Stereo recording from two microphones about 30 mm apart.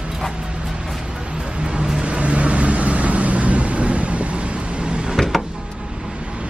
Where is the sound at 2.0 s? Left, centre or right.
Right.